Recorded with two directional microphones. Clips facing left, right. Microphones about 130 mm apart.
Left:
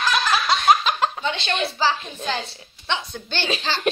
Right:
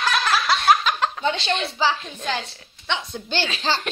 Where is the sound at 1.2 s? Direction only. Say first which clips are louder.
Right 3 dB; 40° right (ahead or behind).